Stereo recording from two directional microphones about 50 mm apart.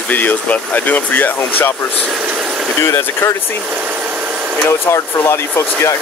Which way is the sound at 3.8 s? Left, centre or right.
Right.